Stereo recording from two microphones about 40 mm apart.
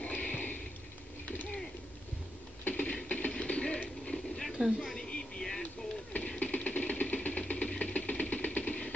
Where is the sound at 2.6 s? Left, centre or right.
Left.